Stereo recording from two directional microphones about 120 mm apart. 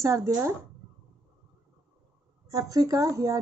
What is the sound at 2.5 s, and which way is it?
Speech, 30° right (ahead or behind).